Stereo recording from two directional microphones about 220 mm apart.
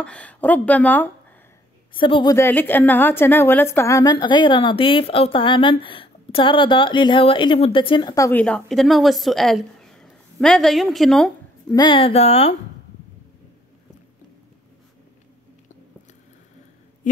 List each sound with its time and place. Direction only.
0.0 s a woman's voice: 5° left (ahead or behind)
2.0 s speech: 20° left (ahead or behind)
2.3 s a woman's voice: 10° left (ahead or behind)
11.7 s speech: 20° left (ahead or behind)